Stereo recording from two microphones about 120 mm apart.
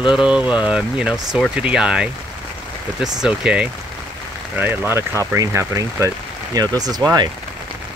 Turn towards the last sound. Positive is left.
turn(degrees=-35)  # may be behind; listen again after turning